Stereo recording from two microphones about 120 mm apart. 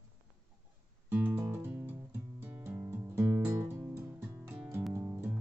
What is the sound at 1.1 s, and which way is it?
Music, 15° right (ahead or behind).